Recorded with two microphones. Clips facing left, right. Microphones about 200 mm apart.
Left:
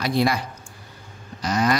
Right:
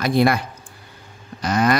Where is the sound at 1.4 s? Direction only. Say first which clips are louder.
Right 3 dB; 55° right (ahead or behind).